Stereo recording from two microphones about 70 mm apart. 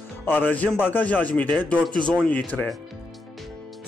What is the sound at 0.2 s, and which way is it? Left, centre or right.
A man's voice, left.